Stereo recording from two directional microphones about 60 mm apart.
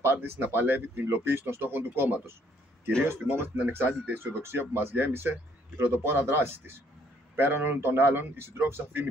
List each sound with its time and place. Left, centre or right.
0.0 s speech: right